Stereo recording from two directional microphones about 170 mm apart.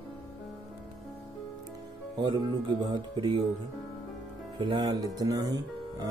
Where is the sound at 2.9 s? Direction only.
30° right (ahead or behind).